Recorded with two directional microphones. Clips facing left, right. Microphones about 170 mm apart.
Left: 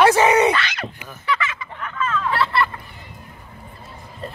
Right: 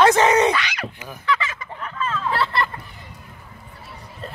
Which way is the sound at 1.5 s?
35° right (ahead or behind).